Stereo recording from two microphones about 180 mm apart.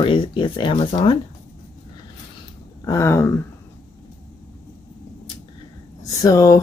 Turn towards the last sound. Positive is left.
turn(degrees=20)  # may be behind; listen again after turning